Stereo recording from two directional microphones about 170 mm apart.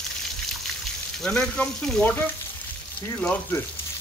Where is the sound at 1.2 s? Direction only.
5° left (ahead or behind).